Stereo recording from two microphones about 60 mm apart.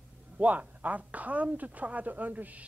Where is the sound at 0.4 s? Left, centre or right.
Right.